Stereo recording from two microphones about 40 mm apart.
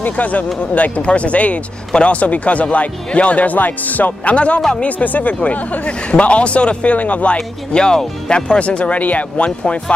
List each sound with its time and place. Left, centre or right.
0.0 s speech: left
4.6 s speech: centre
4.8 s speech: left
7.3 s speech: centre